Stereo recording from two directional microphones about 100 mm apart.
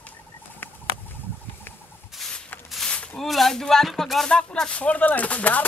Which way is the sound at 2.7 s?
5° left (ahead or behind).